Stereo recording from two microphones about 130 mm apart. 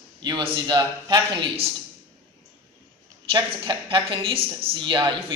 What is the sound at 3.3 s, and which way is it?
A woman's voice, 35° right (ahead or behind).